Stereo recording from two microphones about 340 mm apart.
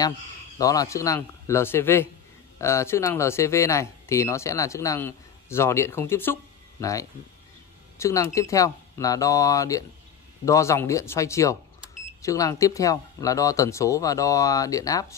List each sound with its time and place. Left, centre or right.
0.6 s speech: centre